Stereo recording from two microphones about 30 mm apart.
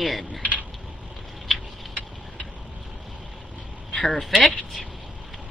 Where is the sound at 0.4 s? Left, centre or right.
Right.